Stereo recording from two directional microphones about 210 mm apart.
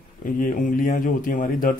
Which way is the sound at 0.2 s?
40° left (ahead or behind).